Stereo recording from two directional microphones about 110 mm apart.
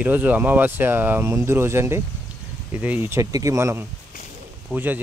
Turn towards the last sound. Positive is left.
turn(degrees=-15)  # may be behind; listen again after turning